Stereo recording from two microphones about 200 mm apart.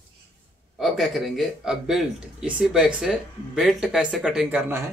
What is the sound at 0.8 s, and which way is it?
Speech, centre (ahead or behind).